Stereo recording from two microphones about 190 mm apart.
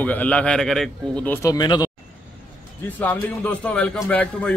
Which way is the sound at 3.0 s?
10° left (ahead or behind).